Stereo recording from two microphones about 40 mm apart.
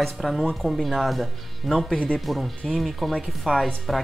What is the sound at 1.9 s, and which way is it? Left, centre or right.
Speech, left.